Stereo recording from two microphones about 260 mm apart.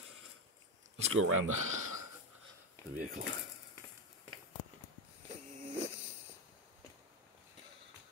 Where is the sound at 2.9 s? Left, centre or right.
Right.